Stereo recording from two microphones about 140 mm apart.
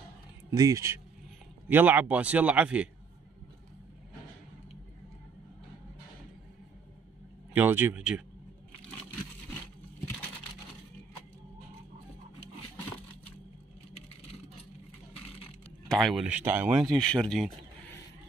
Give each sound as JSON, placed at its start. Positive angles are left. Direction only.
{"t": 0.5, "sound": "speech", "side_deg": -25}
{"t": 7.5, "sound": "speech", "side_deg": -15}
{"t": 15.9, "sound": "speech", "side_deg": 0}
{"t": 16.8, "sound": "speech", "side_deg": 5}